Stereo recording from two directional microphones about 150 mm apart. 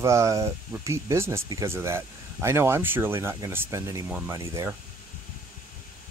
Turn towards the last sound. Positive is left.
turn(degrees=-20)  # may be behind; listen again after turning